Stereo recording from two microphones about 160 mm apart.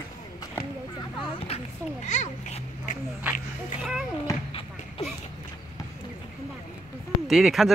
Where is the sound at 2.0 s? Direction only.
50° left (ahead or behind).